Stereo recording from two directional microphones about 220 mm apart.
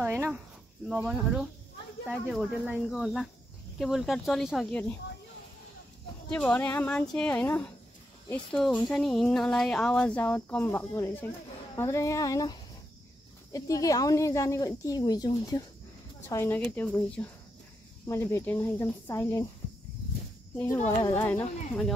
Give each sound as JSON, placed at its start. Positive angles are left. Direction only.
{"t": 0.0, "sound": "speech", "side_deg": -10}
{"t": 6.3, "sound": "speech", "side_deg": 5}
{"t": 21.1, "sound": "speech", "side_deg": 10}